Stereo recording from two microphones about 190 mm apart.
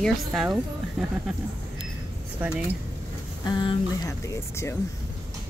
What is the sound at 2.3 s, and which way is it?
Speech, 5° right (ahead or behind).